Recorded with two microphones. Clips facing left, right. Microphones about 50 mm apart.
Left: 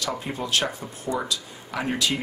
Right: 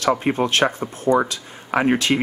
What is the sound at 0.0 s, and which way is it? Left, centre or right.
Speech, right.